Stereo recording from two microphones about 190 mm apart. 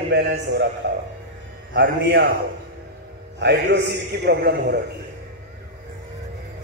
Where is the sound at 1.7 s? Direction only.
70° right (ahead or behind).